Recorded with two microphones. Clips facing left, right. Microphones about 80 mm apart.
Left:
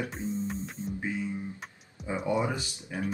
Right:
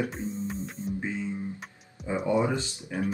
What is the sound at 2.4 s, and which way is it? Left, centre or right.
Speech, centre.